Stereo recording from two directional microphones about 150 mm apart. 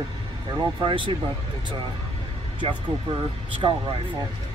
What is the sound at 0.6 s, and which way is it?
Speech, 30° right (ahead or behind).